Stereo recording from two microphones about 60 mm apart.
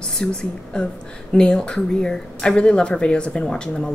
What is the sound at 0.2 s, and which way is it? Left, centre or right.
Speech, centre.